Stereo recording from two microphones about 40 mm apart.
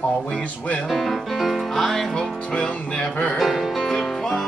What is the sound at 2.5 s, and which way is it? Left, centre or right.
Speech, left.